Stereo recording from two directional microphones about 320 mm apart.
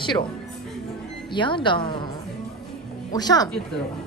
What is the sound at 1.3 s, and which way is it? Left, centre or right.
Speech, centre.